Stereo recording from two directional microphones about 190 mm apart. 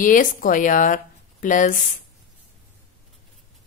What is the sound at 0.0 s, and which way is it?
Speech, 45° left (ahead or behind).